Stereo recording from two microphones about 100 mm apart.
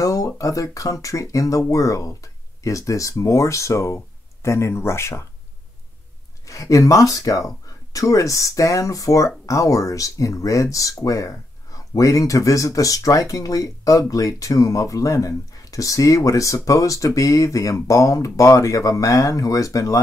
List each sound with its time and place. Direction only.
0.0 s speech: 35° left (ahead or behind)
6.4 s speech: 35° left (ahead or behind)